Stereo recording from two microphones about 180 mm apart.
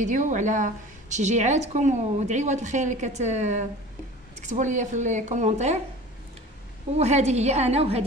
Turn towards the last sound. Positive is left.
turn(degrees=-35)  # may be behind; listen again after turning